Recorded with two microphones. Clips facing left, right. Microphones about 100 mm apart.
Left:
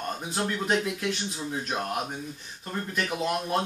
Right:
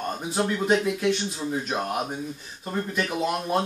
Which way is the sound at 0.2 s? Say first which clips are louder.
Right 7 dB; 5° right (ahead or behind).